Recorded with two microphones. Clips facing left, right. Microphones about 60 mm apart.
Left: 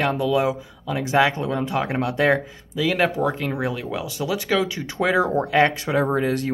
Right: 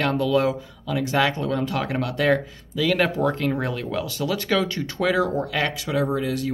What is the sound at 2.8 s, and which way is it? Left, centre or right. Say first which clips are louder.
Speech: even; centre.